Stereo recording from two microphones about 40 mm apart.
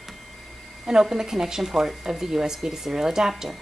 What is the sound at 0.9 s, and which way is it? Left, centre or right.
A woman's voice, centre.